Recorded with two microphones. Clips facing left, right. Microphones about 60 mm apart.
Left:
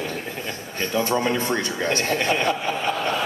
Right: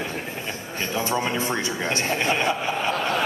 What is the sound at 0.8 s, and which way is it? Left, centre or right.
A man's voice, left.